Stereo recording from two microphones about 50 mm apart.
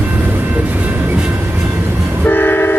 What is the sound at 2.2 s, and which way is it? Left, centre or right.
Train, left.